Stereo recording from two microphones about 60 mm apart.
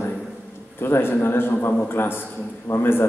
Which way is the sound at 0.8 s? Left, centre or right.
Left.